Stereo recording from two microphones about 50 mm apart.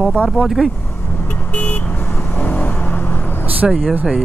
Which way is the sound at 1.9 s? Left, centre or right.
Left.